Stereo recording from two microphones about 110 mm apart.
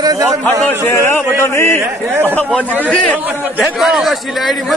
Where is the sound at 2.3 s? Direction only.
10° left (ahead or behind).